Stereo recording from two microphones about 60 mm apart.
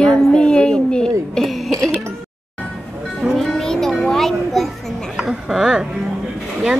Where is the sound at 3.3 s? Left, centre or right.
Centre.